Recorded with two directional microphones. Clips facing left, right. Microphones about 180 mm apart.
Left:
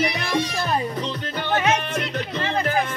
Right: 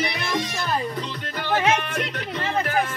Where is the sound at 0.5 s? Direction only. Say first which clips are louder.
Left 2 dB; 25° left (ahead or behind).